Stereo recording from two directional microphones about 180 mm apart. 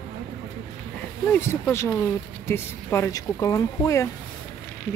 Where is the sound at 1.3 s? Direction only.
10° left (ahead or behind).